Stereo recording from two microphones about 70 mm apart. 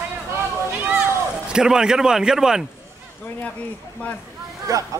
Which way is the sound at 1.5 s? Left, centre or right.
Centre.